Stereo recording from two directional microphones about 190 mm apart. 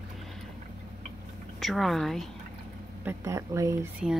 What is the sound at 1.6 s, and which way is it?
Speech, centre (ahead or behind).